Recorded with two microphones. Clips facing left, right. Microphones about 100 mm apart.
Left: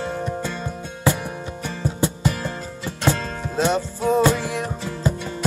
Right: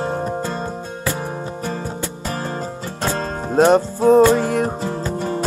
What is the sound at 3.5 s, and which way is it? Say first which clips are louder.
Music: right 8 dB; 45° right (ahead or behind).